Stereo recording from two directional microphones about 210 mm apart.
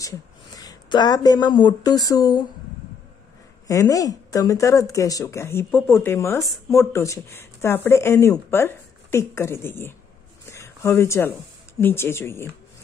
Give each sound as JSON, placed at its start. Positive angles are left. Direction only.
{"t": 0.0, "sound": "speech", "side_deg": 15}
{"t": 3.6, "sound": "speech", "side_deg": 15}